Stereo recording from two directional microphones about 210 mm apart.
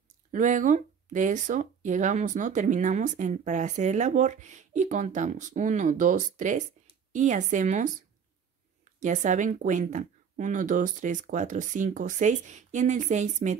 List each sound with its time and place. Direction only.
0.3 s speech: 40° right (ahead or behind)
9.0 s speech: 35° right (ahead or behind)